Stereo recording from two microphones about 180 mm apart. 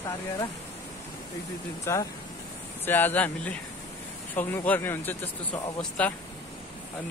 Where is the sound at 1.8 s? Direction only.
15° left (ahead or behind).